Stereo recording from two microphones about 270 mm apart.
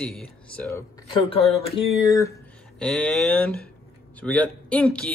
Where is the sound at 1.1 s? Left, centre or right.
Centre.